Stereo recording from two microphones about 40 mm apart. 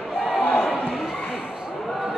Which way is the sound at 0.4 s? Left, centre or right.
Left.